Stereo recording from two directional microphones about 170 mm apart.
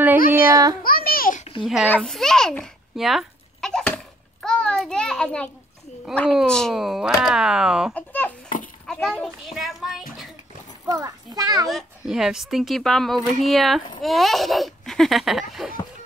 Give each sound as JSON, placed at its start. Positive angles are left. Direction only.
{"t": 0.3, "sound": "a sound", "side_deg": -20}
{"t": 0.8, "sound": "babbling", "side_deg": 60}
{"t": 1.4, "sound": "babbling", "side_deg": 30}
{"t": 1.9, "sound": "a sound", "side_deg": 5}
{"t": 6.1, "sound": "a child's voice", "side_deg": 0}
{"t": 7.9, "sound": "a child's voice", "side_deg": 10}
{"t": 10.9, "sound": "a child's voice", "side_deg": -20}
{"t": 11.6, "sound": "a child's voice", "side_deg": 0}